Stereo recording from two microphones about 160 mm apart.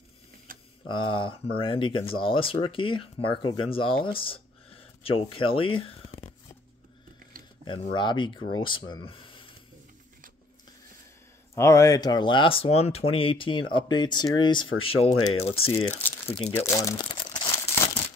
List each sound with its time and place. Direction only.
0.5 s a sound: 60° right (ahead or behind)
0.8 s speech: 30° left (ahead or behind)
7.9 s speech: 30° left (ahead or behind)
11.5 s speech: 20° left (ahead or behind)
15.4 s speech: 40° left (ahead or behind)
15.7 s speech: 15° left (ahead or behind)
16.3 s speech: 40° left (ahead or behind)
16.5 s speech: 20° left (ahead or behind)